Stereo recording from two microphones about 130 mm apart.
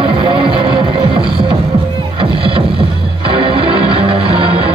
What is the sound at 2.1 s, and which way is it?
Music, 45° right (ahead or behind).